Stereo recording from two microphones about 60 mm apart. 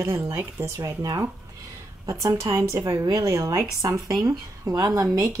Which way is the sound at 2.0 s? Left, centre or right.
Right.